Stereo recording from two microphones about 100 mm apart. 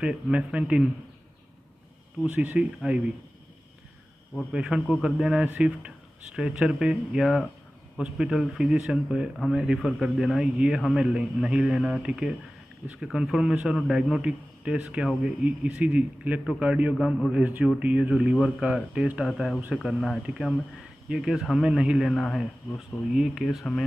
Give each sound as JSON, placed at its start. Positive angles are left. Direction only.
{"t": 0.0, "sound": "speech", "side_deg": -10}
{"t": 2.2, "sound": "speech", "side_deg": -15}
{"t": 4.5, "sound": "a man's voice", "side_deg": -5}
{"t": 16.9, "sound": "a man's voice", "side_deg": 5}
{"t": 17.3, "sound": "a man's voice", "side_deg": -15}